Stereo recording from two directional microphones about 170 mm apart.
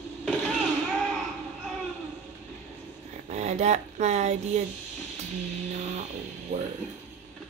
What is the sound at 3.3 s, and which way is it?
Speech, 40° right (ahead or behind).